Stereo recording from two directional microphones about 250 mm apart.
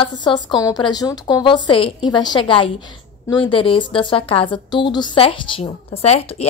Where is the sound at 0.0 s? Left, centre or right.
Centre.